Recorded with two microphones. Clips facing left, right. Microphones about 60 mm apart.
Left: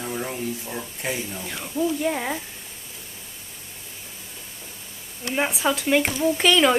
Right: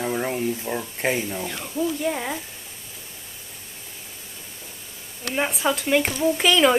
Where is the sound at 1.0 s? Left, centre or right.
Right.